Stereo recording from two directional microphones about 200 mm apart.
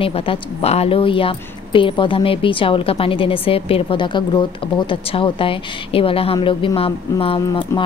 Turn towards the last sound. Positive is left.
turn(degrees=20)  # may be behind; listen again after turning